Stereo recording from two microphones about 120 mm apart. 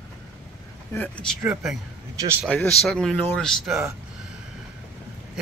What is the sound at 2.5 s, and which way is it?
Speech, 10° left (ahead or behind).